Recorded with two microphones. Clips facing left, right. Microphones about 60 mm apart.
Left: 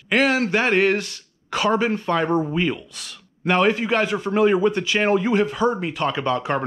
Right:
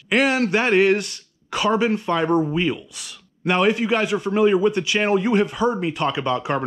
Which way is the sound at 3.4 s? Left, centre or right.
Centre.